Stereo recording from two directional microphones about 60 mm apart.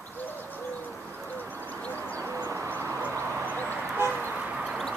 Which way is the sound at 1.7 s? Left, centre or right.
Left.